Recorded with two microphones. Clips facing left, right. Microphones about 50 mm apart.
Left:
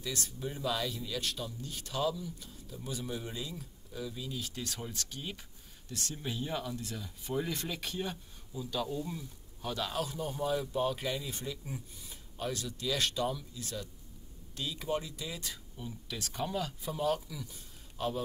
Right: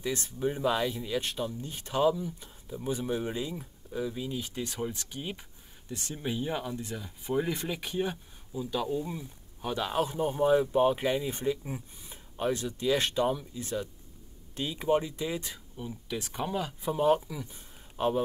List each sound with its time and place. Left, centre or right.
0.0 s speech: right